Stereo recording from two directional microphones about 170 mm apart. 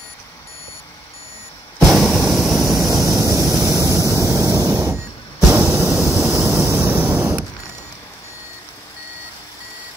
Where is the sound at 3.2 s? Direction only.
20° right (ahead or behind).